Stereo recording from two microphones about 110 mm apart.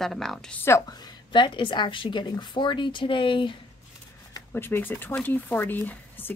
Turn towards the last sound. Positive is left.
turn(degrees=20)  # may be behind; listen again after turning